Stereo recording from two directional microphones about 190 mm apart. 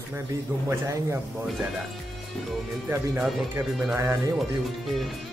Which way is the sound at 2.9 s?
10° right (ahead or behind).